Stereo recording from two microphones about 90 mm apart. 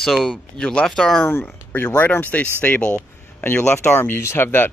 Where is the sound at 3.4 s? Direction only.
25° left (ahead or behind).